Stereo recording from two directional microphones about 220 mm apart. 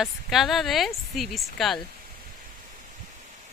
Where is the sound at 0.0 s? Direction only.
Centre (ahead or behind).